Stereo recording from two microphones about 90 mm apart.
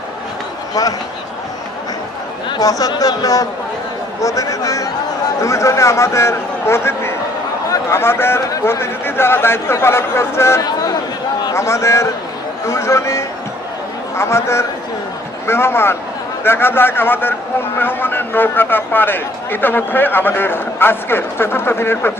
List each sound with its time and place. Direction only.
2.6 s a man's voice: 45° left (ahead or behind)
10.6 s speech: 45° left (ahead or behind)
11.5 s a man's voice: 30° left (ahead or behind)